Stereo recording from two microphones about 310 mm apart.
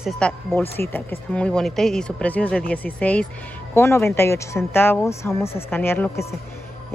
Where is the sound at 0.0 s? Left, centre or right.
Centre.